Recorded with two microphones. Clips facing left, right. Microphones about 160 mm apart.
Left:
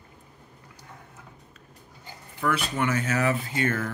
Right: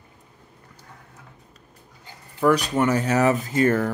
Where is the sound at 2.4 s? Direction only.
40° right (ahead or behind).